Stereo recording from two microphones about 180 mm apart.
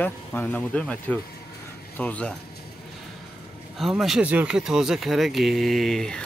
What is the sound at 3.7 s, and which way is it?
Speech, centre (ahead or behind).